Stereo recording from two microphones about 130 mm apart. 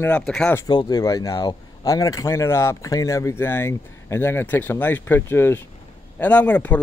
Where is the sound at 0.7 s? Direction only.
35° left (ahead or behind).